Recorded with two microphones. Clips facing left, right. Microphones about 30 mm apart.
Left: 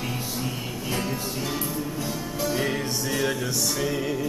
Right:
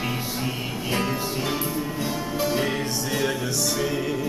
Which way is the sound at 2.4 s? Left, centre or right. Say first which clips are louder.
Right 1 dB; centre.